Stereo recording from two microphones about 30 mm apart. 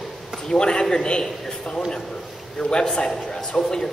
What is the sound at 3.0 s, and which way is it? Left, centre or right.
Speech, left.